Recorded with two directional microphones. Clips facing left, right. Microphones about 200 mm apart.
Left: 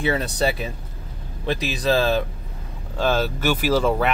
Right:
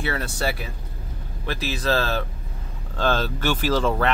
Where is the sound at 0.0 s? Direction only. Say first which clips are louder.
Left 5 dB; 20° left (ahead or behind).